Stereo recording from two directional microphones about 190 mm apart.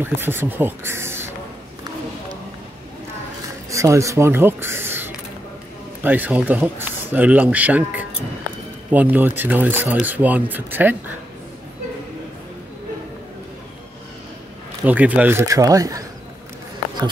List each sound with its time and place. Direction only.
0.0 s speech: 10° right (ahead or behind)
3.7 s speech: 15° right (ahead or behind)
14.9 s speech: 10° right (ahead or behind)